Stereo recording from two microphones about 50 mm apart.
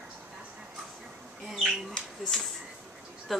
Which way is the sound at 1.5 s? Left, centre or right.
Centre.